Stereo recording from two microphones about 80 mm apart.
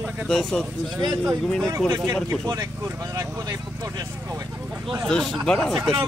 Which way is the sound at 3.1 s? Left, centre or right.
Right.